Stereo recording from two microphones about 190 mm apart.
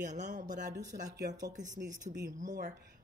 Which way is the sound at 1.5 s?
40° right (ahead or behind).